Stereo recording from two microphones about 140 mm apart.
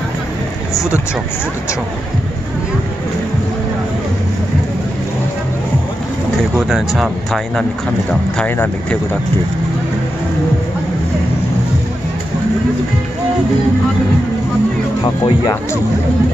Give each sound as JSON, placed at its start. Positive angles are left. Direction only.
{"t": 0.7, "sound": "speech", "side_deg": 20}
{"t": 6.7, "sound": "speech", "side_deg": 0}
{"t": 8.1, "sound": "speech", "side_deg": 5}
{"t": 15.0, "sound": "speech", "side_deg": 30}